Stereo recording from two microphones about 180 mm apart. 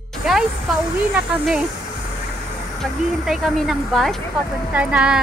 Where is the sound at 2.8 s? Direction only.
Centre (ahead or behind).